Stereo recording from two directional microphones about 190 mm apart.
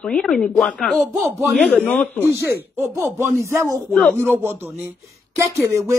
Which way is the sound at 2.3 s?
15° right (ahead or behind).